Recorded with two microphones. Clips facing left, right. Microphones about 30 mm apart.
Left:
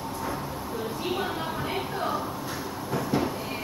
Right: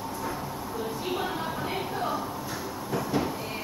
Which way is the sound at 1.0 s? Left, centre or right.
Centre.